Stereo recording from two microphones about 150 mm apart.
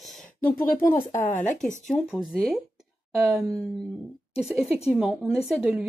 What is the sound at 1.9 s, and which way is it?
Speech, centre (ahead or behind).